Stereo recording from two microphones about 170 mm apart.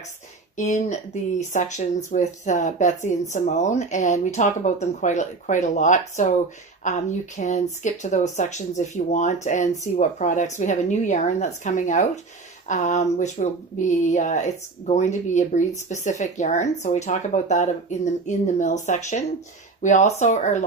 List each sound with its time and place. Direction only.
0.6 s speech: 45° left (ahead or behind)